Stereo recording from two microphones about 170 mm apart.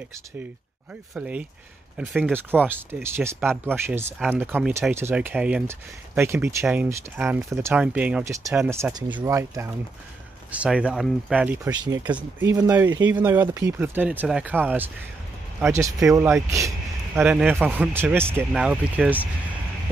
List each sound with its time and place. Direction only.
1.1 s speech: 5° right (ahead or behind)
11.7 s speech: 25° right (ahead or behind)
12.0 s speech: 10° right (ahead or behind)